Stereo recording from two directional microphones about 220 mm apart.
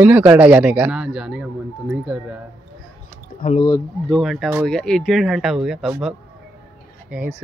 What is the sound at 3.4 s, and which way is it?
Speech, 25° left (ahead or behind).